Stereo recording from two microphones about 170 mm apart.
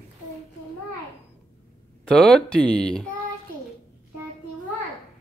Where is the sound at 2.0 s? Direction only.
5° left (ahead or behind).